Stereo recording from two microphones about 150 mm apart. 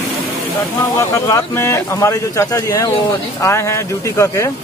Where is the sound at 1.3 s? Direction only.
15° left (ahead or behind).